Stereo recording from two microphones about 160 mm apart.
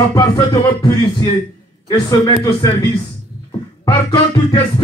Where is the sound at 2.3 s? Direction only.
25° left (ahead or behind).